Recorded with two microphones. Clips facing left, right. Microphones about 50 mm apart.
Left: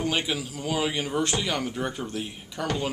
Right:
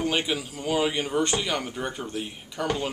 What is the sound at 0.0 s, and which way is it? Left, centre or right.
A man's voice, centre.